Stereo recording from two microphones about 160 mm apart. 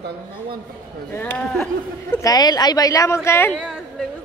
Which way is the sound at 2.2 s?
25° left (ahead or behind).